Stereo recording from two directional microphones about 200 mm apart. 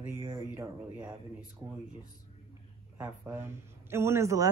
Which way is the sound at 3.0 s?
10° right (ahead or behind).